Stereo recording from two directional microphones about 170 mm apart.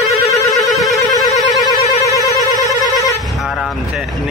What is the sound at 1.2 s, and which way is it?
Siren, centre (ahead or behind).